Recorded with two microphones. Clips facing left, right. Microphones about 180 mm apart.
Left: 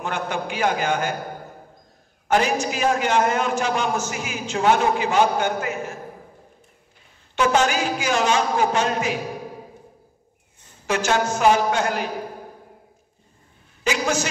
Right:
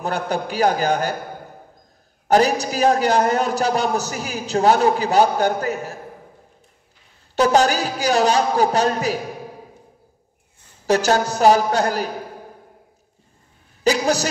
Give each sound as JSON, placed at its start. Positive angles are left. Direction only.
{"t": 0.0, "sound": "a man's voice", "side_deg": -35}
{"t": 2.2, "sound": "a man's voice", "side_deg": -35}
{"t": 7.3, "sound": "a man's voice", "side_deg": -35}
{"t": 10.9, "sound": "a man's voice", "side_deg": -35}
{"t": 13.8, "sound": "a sound", "side_deg": -35}